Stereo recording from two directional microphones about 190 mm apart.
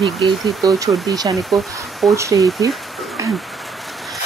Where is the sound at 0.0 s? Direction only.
Centre (ahead or behind).